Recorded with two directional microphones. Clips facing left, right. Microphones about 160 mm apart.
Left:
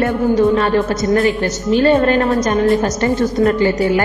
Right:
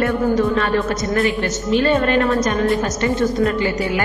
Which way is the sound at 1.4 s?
35° left (ahead or behind).